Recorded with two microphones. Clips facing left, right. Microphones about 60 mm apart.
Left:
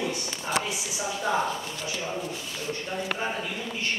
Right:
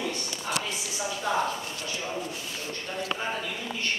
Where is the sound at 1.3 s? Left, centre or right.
Centre.